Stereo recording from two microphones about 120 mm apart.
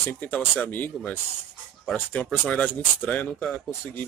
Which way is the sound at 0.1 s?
15° left (ahead or behind).